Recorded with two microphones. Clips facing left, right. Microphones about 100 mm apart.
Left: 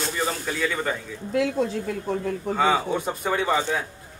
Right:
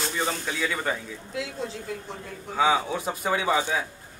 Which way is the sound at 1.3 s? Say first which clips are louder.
Left 10 dB; 55° left (ahead or behind).